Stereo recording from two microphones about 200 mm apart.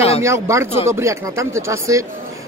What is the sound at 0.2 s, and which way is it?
Speech, 15° right (ahead or behind).